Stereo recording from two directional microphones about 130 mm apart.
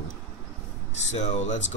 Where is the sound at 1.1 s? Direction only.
60° left (ahead or behind).